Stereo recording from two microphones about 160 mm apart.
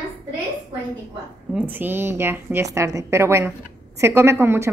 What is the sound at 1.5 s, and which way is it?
A woman's voice, 10° right (ahead or behind).